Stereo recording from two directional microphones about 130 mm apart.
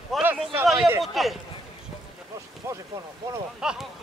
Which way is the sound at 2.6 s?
20° right (ahead or behind).